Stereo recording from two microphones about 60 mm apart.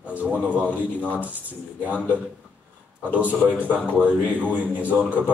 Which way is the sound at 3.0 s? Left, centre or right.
Right.